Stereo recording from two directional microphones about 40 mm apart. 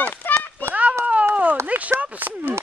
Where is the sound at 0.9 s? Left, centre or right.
Right.